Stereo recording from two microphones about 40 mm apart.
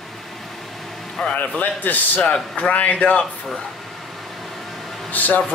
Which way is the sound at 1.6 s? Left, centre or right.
Left.